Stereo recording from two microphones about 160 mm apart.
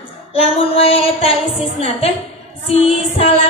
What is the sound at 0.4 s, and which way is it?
A woman's voice, 35° left (ahead or behind).